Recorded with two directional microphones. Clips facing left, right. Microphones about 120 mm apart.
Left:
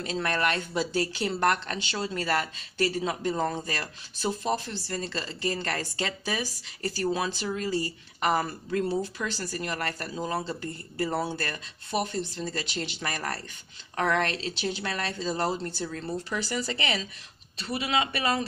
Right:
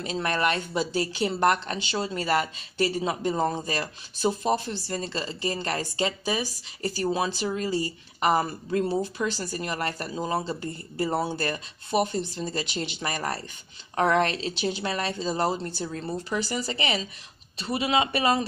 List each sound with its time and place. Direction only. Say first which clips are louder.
0.0 s speech: right 2 dB; 15° right (ahead or behind)
17.6 s speech: right 3 dB; 30° right (ahead or behind)